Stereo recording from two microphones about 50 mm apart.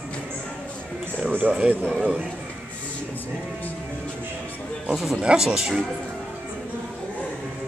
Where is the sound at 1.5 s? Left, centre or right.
Centre.